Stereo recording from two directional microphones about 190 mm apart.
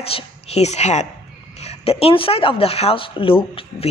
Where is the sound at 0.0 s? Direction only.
30° left (ahead or behind).